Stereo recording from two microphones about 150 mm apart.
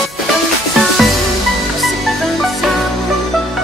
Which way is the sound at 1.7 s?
Centre (ahead or behind).